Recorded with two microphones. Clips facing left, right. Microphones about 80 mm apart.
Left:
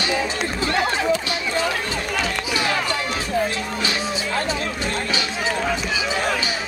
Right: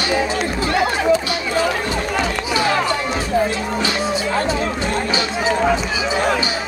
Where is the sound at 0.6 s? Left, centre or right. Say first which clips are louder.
Right 3 dB; right.